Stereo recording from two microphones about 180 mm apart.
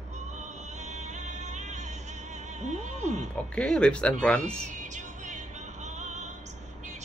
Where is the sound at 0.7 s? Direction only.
40° right (ahead or behind).